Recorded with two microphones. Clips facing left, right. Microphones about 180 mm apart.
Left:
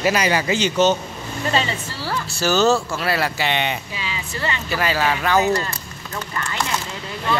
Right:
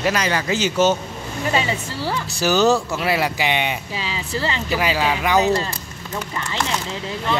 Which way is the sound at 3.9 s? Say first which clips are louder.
Right 3 dB; 35° right (ahead or behind).